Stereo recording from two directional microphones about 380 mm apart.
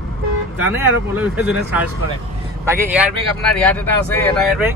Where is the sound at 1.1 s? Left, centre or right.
Centre.